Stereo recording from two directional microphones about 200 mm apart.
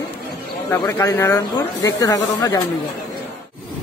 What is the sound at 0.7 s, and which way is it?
Speech, 15° left (ahead or behind).